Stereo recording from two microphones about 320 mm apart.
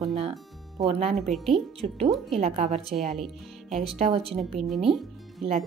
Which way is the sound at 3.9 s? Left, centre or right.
Centre.